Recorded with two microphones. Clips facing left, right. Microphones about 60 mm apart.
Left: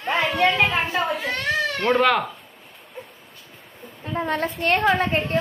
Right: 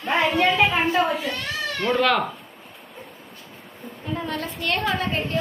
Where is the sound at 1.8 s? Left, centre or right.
Left.